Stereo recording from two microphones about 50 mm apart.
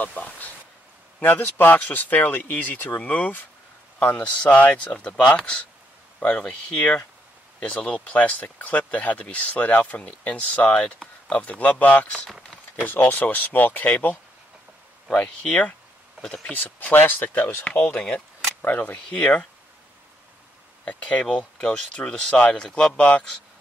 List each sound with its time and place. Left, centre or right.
0.0 s a sound: left
1.2 s speech: left
4.2 s speech: left
15.1 s speech: left
16.9 s speech: left
17.9 s speech: centre
18.6 s speech: left
19.1 s speech: left
20.8 s speech: left